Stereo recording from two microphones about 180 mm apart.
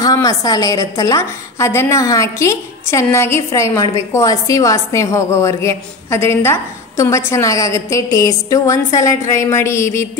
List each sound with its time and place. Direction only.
0.0 s a woman's voice: 20° left (ahead or behind)